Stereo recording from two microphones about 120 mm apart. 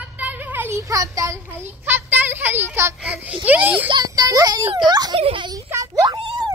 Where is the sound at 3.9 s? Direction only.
35° right (ahead or behind).